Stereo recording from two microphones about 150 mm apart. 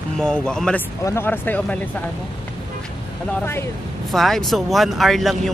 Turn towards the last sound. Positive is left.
turn(degrees=0)  # may be behind; listen again after turning